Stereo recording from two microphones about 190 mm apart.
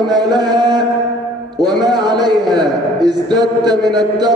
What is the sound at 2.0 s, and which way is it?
A man's voice, 20° right (ahead or behind).